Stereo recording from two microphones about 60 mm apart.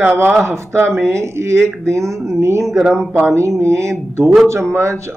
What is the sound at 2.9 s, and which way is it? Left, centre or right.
Speech, centre.